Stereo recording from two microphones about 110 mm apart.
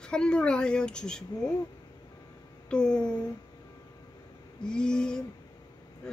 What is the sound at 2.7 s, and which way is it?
Speech, 5° left (ahead or behind).